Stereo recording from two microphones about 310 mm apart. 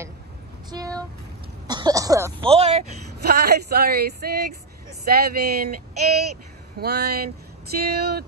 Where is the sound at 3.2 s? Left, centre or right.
Right.